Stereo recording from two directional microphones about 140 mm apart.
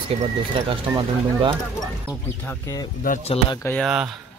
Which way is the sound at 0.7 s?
35° right (ahead or behind).